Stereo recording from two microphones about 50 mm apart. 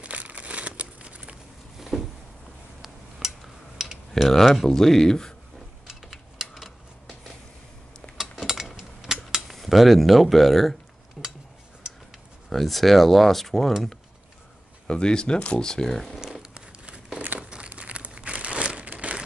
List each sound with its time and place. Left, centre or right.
0.0 s crumpling: right
1.8 s a sound: centre
4.1 s speech: centre
5.9 s a sound: centre
9.5 s speech: centre
11.2 s dishes: centre
12.4 s speech: centre
14.9 s speech: centre
16.4 s a sound: centre
17.2 s crumpling: right
17.6 s crumpling: right